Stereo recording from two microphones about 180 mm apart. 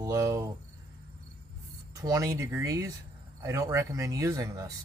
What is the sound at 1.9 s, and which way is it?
Speech, 20° right (ahead or behind).